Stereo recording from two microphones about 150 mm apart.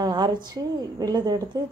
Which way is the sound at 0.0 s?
25° right (ahead or behind).